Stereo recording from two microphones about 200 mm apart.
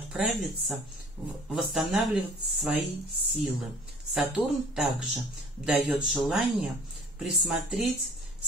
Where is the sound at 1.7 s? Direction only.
Centre (ahead or behind).